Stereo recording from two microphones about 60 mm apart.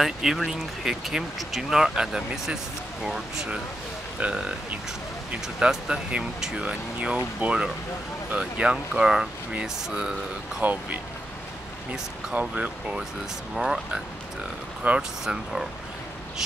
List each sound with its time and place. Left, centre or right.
0.0 s speech: centre
10.6 s speech: right
12.4 s speech: right
14.8 s speech: centre